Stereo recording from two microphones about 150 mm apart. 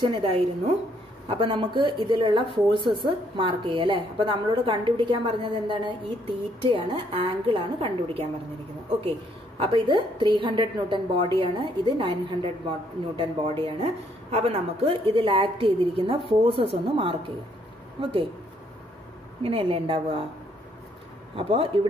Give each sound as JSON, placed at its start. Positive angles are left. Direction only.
{"t": 0.0, "sound": "speech", "side_deg": -35}
{"t": 9.6, "sound": "speech", "side_deg": -35}
{"t": 19.4, "sound": "speech", "side_deg": -40}
{"t": 21.4, "sound": "speech", "side_deg": -40}